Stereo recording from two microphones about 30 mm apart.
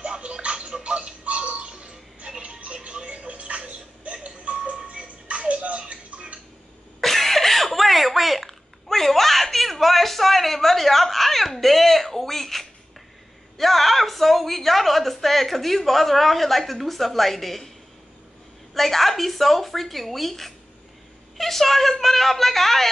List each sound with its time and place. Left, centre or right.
0.0 s tick-tock: right
1.2 s music: right
7.0 s a sound: centre
18.7 s a woman's voice: centre